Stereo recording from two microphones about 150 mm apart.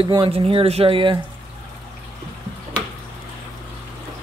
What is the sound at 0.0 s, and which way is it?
Speech, 35° right (ahead or behind).